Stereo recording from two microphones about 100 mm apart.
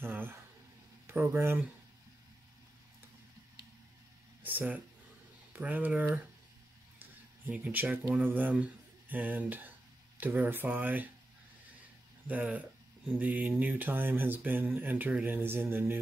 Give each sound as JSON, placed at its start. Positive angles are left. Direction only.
{"t": 0.0, "sound": "a sound", "side_deg": -20}
{"t": 1.0, "sound": "speech", "side_deg": -20}
{"t": 4.4, "sound": "speech", "side_deg": -15}
{"t": 7.0, "sound": "a sound", "side_deg": -20}
{"t": 8.2, "sound": "speech", "side_deg": -15}
{"t": 12.3, "sound": "speech", "side_deg": -15}